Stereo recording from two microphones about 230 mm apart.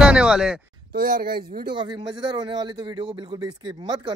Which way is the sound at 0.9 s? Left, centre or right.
Right.